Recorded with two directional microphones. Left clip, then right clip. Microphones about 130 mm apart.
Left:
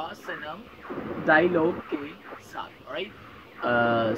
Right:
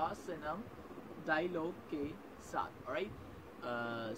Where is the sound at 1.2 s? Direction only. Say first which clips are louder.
Left 16 dB; 20° right (ahead or behind).